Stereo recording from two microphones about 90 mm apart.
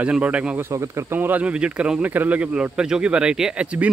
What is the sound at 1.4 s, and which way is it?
Speech, 15° right (ahead or behind).